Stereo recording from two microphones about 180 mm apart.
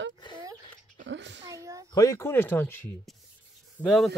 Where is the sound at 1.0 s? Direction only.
80° right.